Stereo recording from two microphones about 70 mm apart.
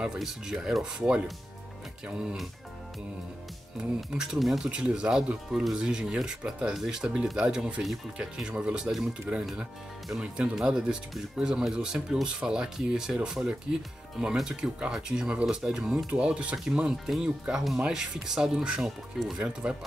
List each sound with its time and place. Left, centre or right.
0.0 s speech: centre
4.1 s speech: centre